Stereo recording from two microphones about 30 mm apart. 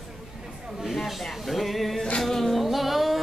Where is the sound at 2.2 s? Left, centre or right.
Centre.